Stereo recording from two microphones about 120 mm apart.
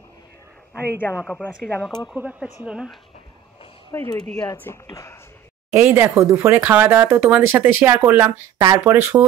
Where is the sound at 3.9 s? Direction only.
25° left (ahead or behind).